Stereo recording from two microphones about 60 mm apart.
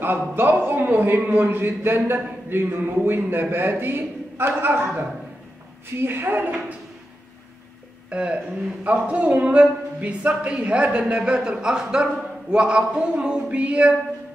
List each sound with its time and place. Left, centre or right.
0.0 s a man's voice: right
8.1 s a man's voice: centre